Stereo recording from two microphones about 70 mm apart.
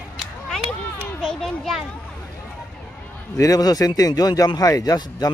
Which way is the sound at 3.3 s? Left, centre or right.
Left.